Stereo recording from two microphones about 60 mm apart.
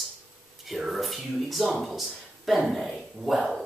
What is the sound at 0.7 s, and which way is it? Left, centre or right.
Speech, centre.